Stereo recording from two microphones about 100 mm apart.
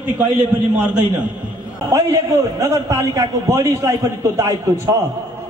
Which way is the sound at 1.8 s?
30° right (ahead or behind).